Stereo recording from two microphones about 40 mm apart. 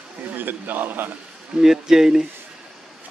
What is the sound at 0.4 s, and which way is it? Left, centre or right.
Speech, right.